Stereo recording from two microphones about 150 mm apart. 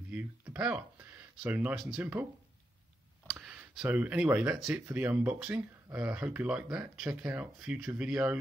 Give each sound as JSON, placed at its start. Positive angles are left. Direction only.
{"t": 0.1, "sound": "speech", "side_deg": -10}
{"t": 3.3, "sound": "speech", "side_deg": -5}